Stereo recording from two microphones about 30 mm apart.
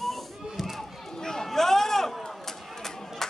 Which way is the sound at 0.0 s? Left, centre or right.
Centre.